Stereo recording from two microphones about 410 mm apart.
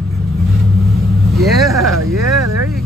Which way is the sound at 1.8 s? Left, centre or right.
Right.